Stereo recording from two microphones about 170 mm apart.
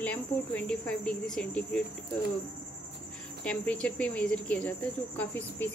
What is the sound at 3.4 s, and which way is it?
Speech, 5° left (ahead or behind).